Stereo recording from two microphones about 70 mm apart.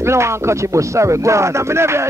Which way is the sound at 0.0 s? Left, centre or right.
Right.